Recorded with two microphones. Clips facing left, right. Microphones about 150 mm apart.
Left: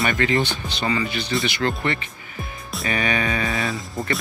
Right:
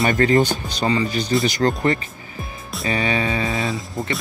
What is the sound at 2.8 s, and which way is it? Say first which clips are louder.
Speech: right 2 dB; 30° right (ahead or behind).